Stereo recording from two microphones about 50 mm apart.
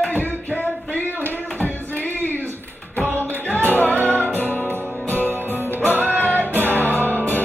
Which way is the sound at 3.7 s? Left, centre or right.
Left.